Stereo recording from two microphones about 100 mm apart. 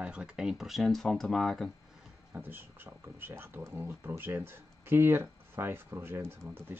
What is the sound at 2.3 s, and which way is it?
Speech, 20° right (ahead or behind).